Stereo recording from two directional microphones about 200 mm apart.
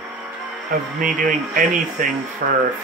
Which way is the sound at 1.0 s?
45° right (ahead or behind).